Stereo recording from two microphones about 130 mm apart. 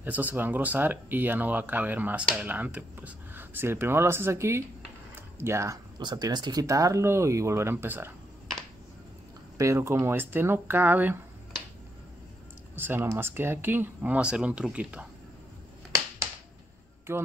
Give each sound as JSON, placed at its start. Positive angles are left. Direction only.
{"t": 0.0, "sound": "speech", "side_deg": -15}
{"t": 5.1, "sound": "typing", "side_deg": -20}
{"t": 5.9, "sound": "speech", "side_deg": -30}
{"t": 9.6, "sound": "speech", "side_deg": -20}
{"t": 12.7, "sound": "speech", "side_deg": -15}
{"t": 17.1, "sound": "speech", "side_deg": -20}